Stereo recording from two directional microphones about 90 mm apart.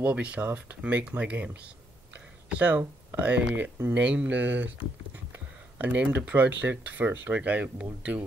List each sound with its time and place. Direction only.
0.0 s speech: 15° right (ahead or behind)
2.5 s speech: 15° right (ahead or behind)